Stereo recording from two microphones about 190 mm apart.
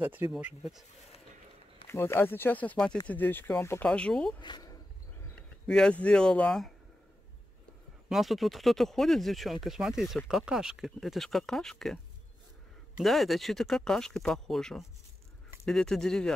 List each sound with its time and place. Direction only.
0.0 s speech: 10° right (ahead or behind)
1.9 s speech: 15° left (ahead or behind)
4.4 s speech: 20° left (ahead or behind)
5.7 s speech: 5° left (ahead or behind)
8.1 s speech: centre (ahead or behind)
13.0 s speech: centre (ahead or behind)